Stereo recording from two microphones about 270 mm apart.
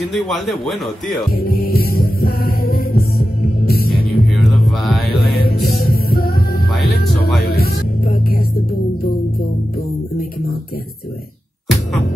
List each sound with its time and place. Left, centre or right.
0.1 s a man's voice: centre
1.3 s music: left
4.4 s music: centre
5.2 s music: left
6.7 s music: centre
7.4 s music: left